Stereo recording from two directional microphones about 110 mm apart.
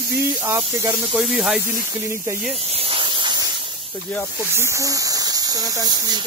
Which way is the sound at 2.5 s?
65° right (ahead or behind).